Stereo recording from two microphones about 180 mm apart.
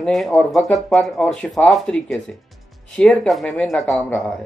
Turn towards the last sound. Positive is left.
turn(degrees=10)  # may be behind; listen again after turning